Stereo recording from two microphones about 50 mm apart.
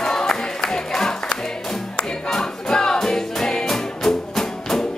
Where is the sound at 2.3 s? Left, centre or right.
Centre.